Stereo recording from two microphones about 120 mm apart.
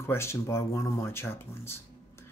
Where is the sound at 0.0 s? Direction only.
20° left (ahead or behind).